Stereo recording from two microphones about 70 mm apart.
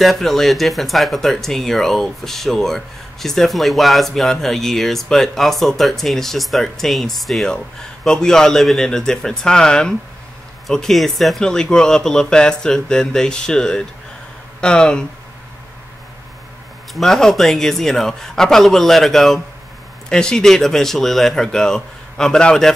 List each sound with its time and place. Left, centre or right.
0.0 s speech: centre
16.9 s speech: centre